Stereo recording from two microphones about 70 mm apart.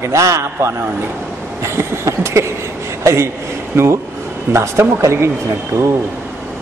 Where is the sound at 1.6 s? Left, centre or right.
Right.